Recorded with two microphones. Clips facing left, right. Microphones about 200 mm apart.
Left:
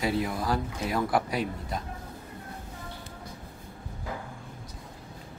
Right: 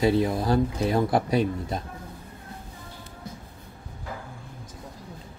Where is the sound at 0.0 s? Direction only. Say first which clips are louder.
Right 6 dB; 25° right (ahead or behind).